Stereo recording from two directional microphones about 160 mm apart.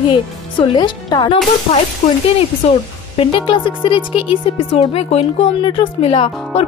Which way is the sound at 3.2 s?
30° left (ahead or behind).